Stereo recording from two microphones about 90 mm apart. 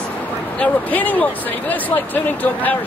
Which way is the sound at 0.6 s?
15° left (ahead or behind).